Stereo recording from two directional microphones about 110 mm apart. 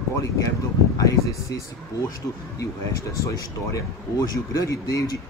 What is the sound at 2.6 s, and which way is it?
Speech, 30° left (ahead or behind).